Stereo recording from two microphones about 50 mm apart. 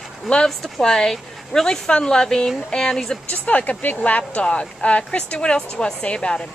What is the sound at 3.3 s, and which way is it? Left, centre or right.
A woman's voice, left.